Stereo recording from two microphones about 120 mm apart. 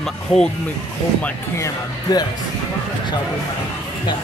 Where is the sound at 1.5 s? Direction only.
25° left (ahead or behind).